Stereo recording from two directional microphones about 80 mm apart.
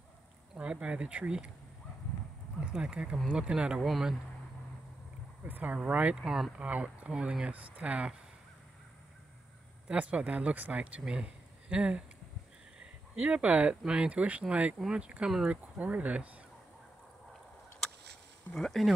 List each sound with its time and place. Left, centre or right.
0.6 s speech: centre
2.6 s speech: centre
5.5 s speech: right
6.1 s speech: centre
6.6 s speech: centre
9.8 s speech: centre
13.1 s speech: centre
17.8 s a sound: centre
18.5 s speech: centre